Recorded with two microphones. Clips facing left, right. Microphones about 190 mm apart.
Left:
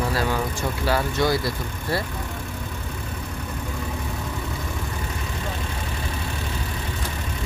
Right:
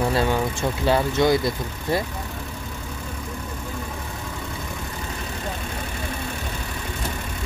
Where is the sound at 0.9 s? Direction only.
20° right (ahead or behind).